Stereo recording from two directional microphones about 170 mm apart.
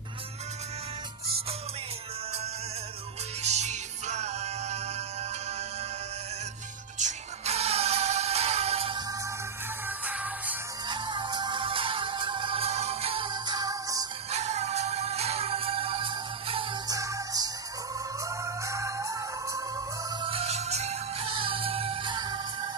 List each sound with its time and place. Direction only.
3.4 s music: 40° right (ahead or behind)
7.0 s music: 40° right (ahead or behind)
9.8 s music: 10° right (ahead or behind)
10.9 s music: 25° right (ahead or behind)
14.3 s music: 40° right (ahead or behind)
16.9 s music: 20° right (ahead or behind)
20.2 s music: 35° right (ahead or behind)